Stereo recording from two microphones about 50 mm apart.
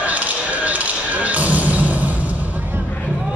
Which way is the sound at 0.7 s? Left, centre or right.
Right.